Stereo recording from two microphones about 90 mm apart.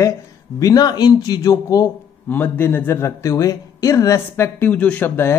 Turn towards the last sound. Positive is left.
turn(degrees=25)  # may be behind; listen again after turning